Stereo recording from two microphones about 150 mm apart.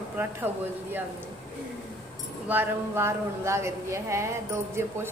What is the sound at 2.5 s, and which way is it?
A woman's voice, 15° right (ahead or behind).